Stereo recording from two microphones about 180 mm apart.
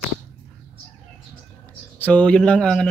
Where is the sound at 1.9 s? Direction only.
10° left (ahead or behind).